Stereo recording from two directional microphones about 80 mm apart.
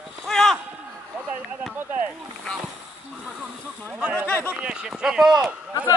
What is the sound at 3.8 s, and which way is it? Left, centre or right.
Speech, right.